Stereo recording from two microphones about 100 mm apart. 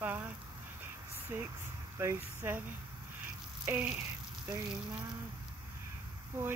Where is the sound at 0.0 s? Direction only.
15° right (ahead or behind).